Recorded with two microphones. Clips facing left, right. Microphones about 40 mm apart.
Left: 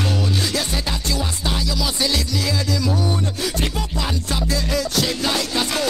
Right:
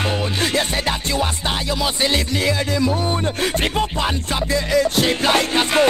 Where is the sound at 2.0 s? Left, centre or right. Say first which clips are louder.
Right 3 dB; right.